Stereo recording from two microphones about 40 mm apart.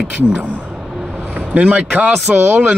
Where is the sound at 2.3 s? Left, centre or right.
Right.